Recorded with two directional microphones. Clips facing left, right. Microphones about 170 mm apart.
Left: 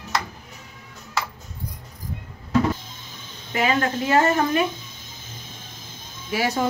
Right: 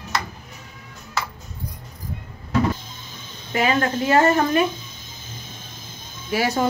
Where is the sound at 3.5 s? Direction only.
40° right (ahead or behind).